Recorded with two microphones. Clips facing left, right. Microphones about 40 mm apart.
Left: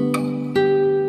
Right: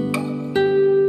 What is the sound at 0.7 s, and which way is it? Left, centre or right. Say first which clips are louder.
Music: right 3 dB; centre.